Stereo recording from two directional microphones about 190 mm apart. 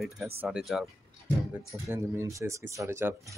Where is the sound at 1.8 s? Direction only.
15° right (ahead or behind).